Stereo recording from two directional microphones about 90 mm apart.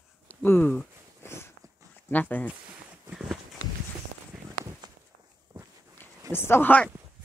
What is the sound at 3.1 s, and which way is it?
Walk, 5° right (ahead or behind).